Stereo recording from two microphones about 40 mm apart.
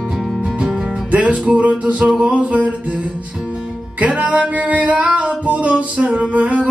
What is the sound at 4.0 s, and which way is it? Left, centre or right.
Music, right.